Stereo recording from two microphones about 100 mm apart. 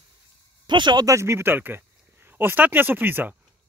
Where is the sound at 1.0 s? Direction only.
30° right (ahead or behind).